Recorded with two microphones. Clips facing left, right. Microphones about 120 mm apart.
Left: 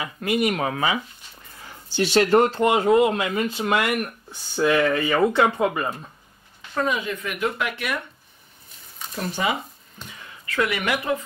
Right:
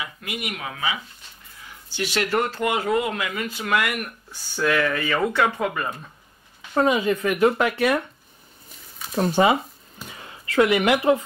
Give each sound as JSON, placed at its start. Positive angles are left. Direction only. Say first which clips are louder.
{"t": 0.0, "sound": "speech", "louder": "left 9 dB", "side_deg": 40}
{"t": 1.7, "sound": "speech", "louder": "left 6 dB", "side_deg": 30}
{"t": 6.7, "sound": "speech", "louder": "right 5 dB", "side_deg": -30}
{"t": 9.1, "sound": "speech", "louder": "right 7 dB", "side_deg": -40}